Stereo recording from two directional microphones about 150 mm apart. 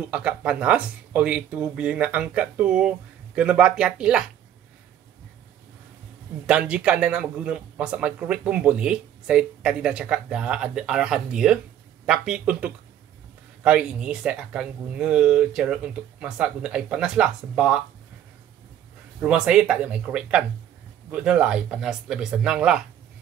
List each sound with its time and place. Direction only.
0.1 s speech: 10° right (ahead or behind)
6.4 s speech: 5° right (ahead or behind)
19.2 s speech: 5° right (ahead or behind)